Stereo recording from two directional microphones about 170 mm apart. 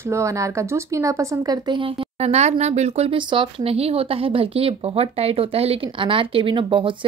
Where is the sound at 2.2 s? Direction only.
40° right (ahead or behind).